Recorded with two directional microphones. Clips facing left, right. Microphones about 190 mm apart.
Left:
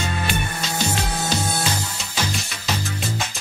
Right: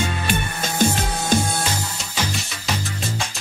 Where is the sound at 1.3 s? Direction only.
50° right (ahead or behind).